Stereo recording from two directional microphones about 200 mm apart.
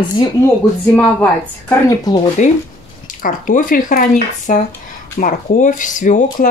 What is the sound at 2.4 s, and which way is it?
Speech, 40° left (ahead or behind).